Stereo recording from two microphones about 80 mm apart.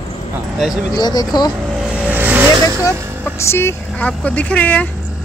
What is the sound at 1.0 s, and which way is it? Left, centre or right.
Speech, left.